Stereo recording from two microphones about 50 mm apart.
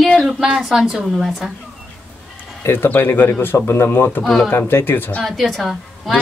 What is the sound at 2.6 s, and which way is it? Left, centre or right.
Speech, left.